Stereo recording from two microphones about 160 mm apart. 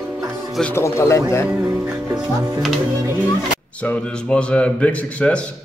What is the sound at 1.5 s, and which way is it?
Speech, 5° right (ahead or behind).